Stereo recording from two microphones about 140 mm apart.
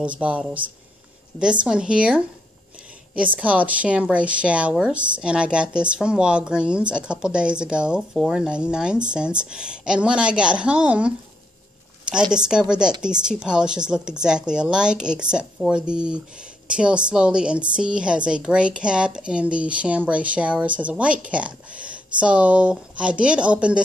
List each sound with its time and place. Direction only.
0.0 s a woman's voice: 10° right (ahead or behind)
3.3 s a woman's voice: 10° right (ahead or behind)
12.3 s a woman's voice: 5° right (ahead or behind)